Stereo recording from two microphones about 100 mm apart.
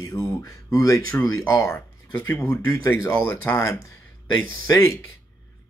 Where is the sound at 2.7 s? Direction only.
30° left (ahead or behind).